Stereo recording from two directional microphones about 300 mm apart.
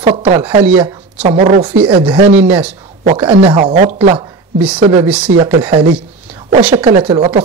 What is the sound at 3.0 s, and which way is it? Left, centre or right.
Speech, right.